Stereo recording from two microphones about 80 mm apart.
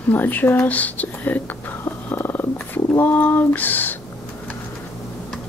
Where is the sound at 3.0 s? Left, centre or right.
Left.